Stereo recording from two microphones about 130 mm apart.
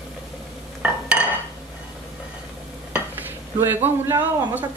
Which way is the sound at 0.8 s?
10° right (ahead or behind).